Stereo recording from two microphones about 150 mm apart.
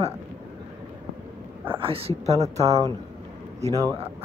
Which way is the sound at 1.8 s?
40° right (ahead or behind).